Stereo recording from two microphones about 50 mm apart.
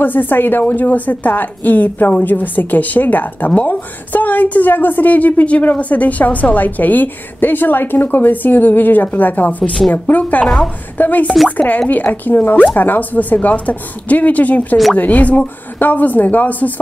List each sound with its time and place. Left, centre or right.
0.0 s a woman's voice: left
10.4 s a woman's voice: centre
11.0 s a woman's voice: left